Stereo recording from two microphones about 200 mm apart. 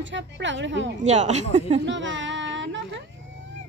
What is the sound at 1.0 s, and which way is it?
Speech, 35° right (ahead or behind).